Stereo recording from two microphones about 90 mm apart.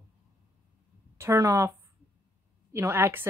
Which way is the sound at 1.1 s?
30° right (ahead or behind).